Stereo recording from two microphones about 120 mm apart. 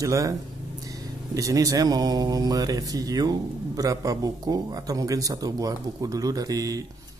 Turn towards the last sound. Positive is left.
turn(degrees=-30)  # may be behind; listen again after turning